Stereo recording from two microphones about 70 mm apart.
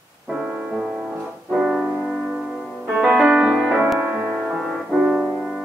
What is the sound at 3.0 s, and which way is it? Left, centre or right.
Music, centre.